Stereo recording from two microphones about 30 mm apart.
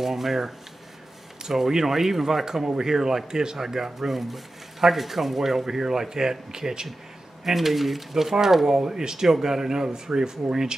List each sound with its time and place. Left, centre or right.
0.0 s speech: centre
1.7 s speech: centre
7.4 s speech: centre